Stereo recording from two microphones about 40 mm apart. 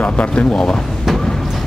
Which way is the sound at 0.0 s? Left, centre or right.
Left.